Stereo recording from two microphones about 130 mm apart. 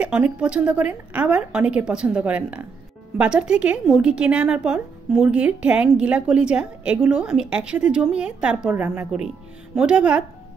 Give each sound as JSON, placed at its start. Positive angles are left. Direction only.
{"t": 0.0, "sound": "a woman's voice", "side_deg": -10}